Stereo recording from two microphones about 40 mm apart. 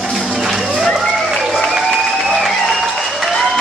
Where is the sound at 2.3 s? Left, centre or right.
Centre.